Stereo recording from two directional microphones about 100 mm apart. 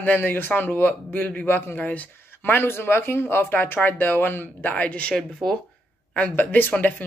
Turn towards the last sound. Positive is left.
turn(degrees=15)  # may be behind; listen again after turning